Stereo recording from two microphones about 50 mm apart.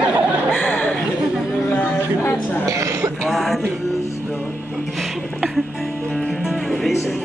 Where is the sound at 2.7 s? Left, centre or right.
Right.